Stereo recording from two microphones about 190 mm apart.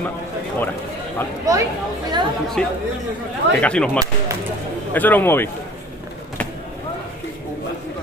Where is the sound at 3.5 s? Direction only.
5° left (ahead or behind).